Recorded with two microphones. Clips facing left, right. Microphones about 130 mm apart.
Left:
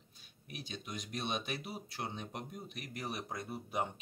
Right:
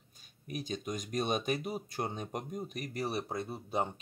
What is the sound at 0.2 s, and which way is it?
Speech, 45° right (ahead or behind).